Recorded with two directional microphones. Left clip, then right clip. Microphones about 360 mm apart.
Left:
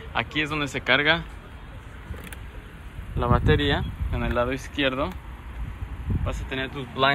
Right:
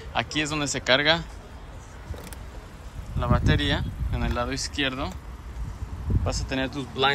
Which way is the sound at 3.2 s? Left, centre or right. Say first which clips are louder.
Left 3 dB; centre.